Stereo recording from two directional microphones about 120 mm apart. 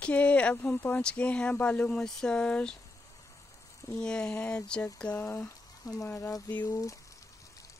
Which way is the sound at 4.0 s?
5° left (ahead or behind).